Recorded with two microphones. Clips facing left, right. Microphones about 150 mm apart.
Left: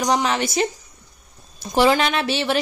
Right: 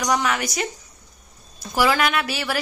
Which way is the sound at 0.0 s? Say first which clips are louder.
Left 2 dB; 25° left (ahead or behind).